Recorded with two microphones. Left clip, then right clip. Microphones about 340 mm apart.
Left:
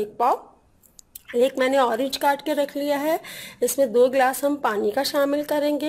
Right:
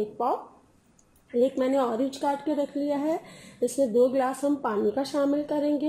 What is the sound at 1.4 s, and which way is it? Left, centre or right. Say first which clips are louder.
A woman's voice: left 5 dB; left.